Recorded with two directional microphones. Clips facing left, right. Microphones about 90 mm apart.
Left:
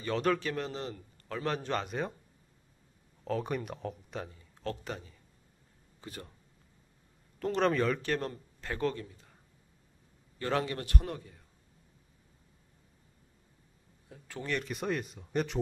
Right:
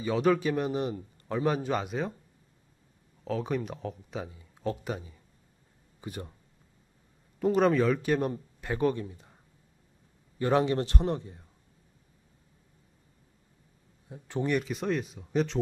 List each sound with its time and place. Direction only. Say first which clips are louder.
0.0 s speech: right 5 dB; 5° right (ahead or behind)
0.5 s speech: right 7 dB; 15° right (ahead or behind)
3.3 s speech: right 3 dB; centre (ahead or behind); by 6.3 s 15° right (ahead or behind)
7.3 s speech: right 5 dB; 10° right (ahead or behind)
10.4 s a man's voice: right 7 dB; 20° right (ahead or behind)
14.0 s speech: right 8 dB; 20° right (ahead or behind)
14.6 s speech: right 4 dB; centre (ahead or behind)